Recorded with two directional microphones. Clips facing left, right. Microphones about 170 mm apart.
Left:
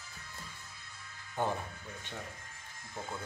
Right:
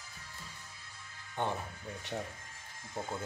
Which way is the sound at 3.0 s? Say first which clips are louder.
Right 3 dB; 30° right (ahead or behind).